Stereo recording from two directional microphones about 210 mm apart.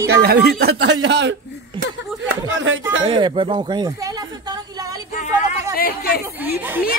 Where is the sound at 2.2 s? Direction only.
60° right (ahead or behind).